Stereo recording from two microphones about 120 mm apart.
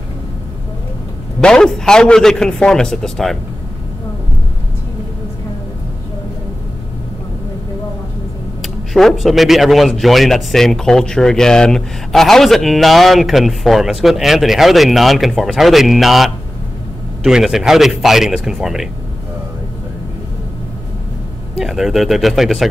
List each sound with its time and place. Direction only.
1.4 s speech: 5° left (ahead or behind)
8.9 s speech: centre (ahead or behind)
21.5 s speech: 5° right (ahead or behind)